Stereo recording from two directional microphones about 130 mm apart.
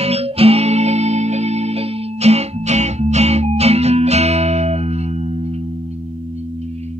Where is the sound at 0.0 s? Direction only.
50° right (ahead or behind).